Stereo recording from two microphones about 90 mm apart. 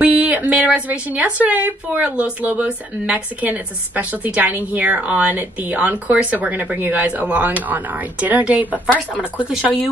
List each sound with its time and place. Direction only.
0.0 s a woman's voice: 20° right (ahead or behind)